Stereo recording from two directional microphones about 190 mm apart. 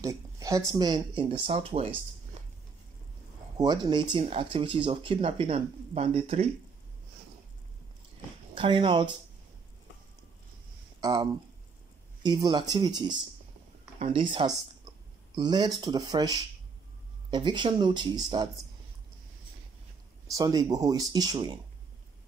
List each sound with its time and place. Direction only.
0.0 s speech: 15° right (ahead or behind)
3.5 s speech: 20° right (ahead or behind)
8.5 s speech: 25° right (ahead or behind)
11.0 s speech: 20° right (ahead or behind)
20.2 s speech: 20° right (ahead or behind)